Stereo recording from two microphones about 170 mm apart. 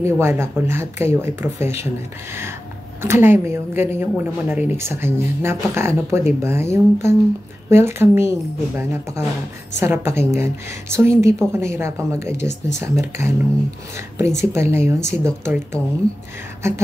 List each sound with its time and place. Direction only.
0.0 s speech: 15° right (ahead or behind)
3.0 s speech: 15° right (ahead or behind)